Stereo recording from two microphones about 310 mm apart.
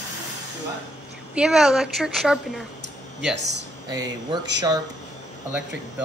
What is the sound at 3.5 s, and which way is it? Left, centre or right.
Speech, right.